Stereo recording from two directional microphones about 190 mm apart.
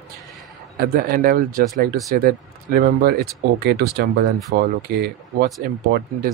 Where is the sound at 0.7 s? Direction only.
55° right (ahead or behind).